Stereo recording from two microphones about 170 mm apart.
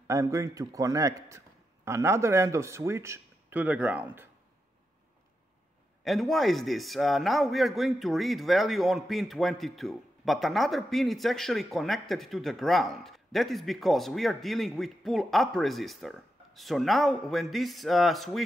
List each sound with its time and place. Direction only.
0.0 s a man's voice: 20° right (ahead or behind)
6.0 s a man's voice: centre (ahead or behind)